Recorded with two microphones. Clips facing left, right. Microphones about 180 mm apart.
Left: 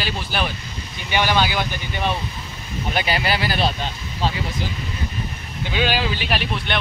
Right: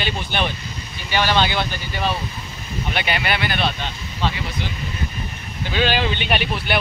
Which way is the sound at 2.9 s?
35° left (ahead or behind).